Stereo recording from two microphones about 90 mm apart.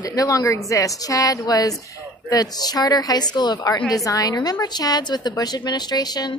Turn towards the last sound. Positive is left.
turn(degrees=50)  # may be behind; listen again after turning